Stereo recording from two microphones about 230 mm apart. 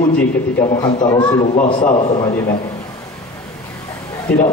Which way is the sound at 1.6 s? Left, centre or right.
Left.